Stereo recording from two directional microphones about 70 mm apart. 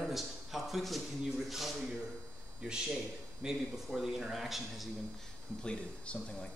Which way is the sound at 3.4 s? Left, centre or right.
Centre.